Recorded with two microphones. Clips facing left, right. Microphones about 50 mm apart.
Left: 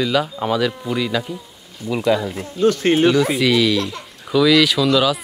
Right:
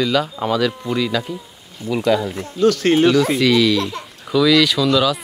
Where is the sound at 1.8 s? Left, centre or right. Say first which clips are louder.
Right 1 dB; right.